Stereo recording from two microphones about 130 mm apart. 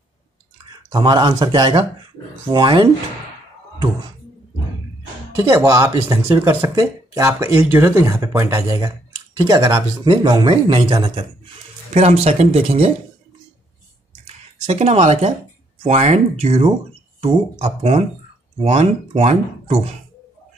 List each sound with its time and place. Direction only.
0.9 s speech: 35° right (ahead or behind)
5.7 s speech: 25° right (ahead or behind); by 11.2 s 40° right (ahead or behind)
11.9 s speech: 55° right (ahead or behind)
14.2 s a sound: 55° right (ahead or behind)
15.8 s speech: 60° right (ahead or behind)